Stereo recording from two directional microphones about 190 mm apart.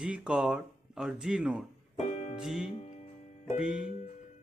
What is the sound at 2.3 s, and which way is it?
Music, 5° right (ahead or behind).